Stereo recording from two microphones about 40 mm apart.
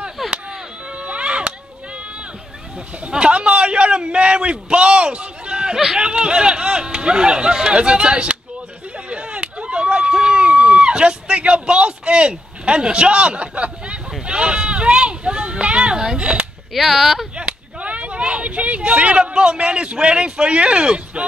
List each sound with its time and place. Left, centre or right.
0.3 s chop: right
3.1 s a man's voice: right
9.1 s a sound: right
14.2 s sheep: right
16.2 s speech: right
16.7 s speech: centre
17.4 s a sound: right
19.3 s speech: right